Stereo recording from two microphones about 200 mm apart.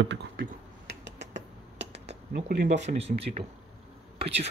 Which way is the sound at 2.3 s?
40° right (ahead or behind).